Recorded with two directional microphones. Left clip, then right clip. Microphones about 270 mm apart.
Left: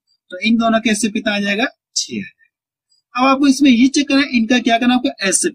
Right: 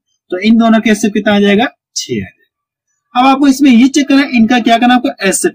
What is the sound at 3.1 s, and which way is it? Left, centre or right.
Speech, centre.